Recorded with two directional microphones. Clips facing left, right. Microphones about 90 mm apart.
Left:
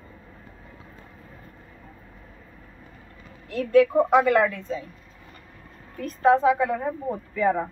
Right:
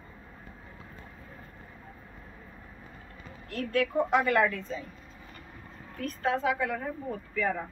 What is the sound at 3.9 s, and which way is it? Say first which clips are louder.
Speech: left 7 dB; 25° left (ahead or behind).